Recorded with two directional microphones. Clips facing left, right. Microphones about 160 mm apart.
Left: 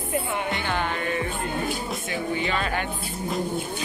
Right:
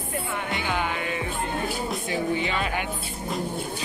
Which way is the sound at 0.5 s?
5° right (ahead or behind).